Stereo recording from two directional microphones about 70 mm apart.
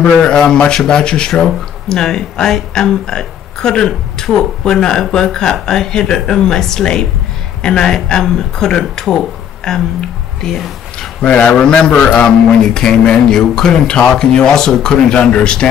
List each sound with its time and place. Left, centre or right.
0.0 s speech: centre
10.4 s a sound: centre
11.1 s speech: centre